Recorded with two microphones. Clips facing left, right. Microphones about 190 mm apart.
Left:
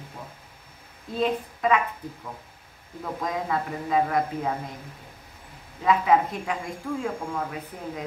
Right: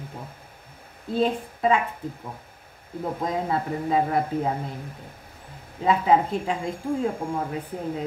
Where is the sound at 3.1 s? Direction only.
30° right (ahead or behind).